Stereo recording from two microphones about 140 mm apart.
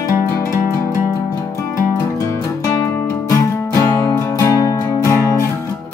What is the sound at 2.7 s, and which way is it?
Music, 20° left (ahead or behind).